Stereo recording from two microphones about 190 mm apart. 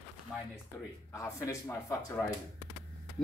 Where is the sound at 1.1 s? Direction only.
15° left (ahead or behind).